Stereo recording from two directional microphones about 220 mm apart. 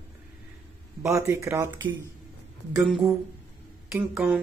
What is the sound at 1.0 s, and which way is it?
Speech, 15° right (ahead or behind).